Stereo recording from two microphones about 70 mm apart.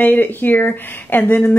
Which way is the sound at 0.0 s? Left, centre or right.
Left.